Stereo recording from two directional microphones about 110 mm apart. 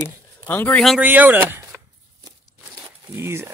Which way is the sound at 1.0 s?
15° right (ahead or behind).